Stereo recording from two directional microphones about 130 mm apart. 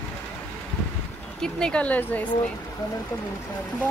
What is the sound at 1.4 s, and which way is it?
Speech, 5° left (ahead or behind).